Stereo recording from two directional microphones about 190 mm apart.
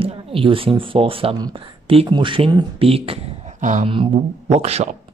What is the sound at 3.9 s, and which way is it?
Speech, 30° right (ahead or behind).